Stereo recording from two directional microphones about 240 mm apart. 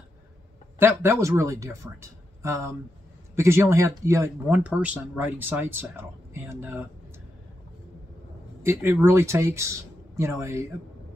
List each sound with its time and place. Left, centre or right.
0.7 s speech: centre
8.6 s speech: centre